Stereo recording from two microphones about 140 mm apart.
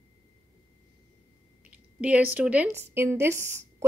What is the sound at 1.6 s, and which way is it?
A woman's voice, 10° right (ahead or behind).